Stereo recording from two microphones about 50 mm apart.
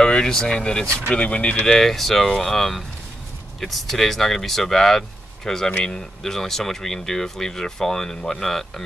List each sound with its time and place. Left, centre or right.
0.0 s speech: centre
1.8 s speech: centre